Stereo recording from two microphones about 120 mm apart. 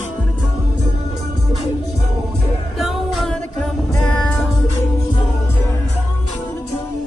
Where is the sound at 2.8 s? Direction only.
5° left (ahead or behind).